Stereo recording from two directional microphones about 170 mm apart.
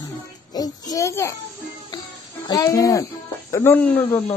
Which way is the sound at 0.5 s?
20° left (ahead or behind).